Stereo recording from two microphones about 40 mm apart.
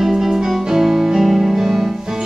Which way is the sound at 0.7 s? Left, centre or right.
Centre.